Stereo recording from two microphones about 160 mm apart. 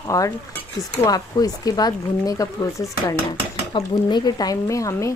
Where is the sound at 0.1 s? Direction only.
20° left (ahead or behind).